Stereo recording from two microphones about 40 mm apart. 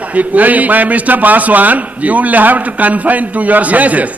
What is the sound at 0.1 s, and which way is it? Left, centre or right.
A man's voice, right.